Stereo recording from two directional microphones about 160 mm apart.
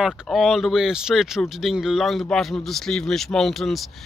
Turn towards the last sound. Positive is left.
turn(degrees=0)  # may be behind; listen again after turning